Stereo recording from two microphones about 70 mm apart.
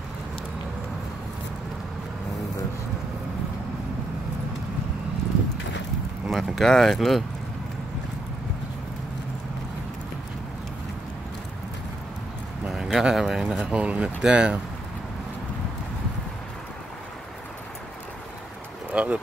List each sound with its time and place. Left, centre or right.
6.2 s speech: centre
12.6 s speech: centre
18.9 s vehicle: centre